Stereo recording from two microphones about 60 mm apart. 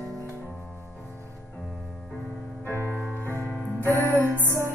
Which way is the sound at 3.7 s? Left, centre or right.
Right.